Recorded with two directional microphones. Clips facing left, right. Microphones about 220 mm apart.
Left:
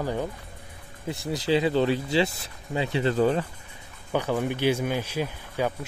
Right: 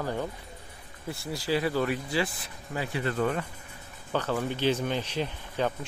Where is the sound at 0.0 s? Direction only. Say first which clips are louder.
Left 3 dB; 15° left (ahead or behind).